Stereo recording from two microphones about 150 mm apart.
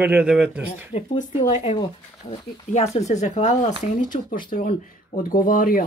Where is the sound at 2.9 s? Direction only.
50° left (ahead or behind); by 5.8 s 65° left (ahead or behind).